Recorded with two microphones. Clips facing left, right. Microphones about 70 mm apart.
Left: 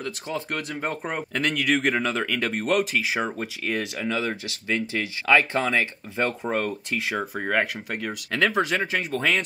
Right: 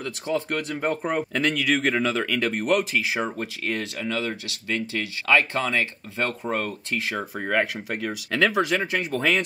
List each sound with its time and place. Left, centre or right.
0.0 s speech: centre
4.0 s speech: centre